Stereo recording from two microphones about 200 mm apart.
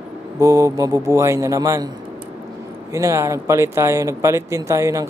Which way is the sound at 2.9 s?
15° right (ahead or behind).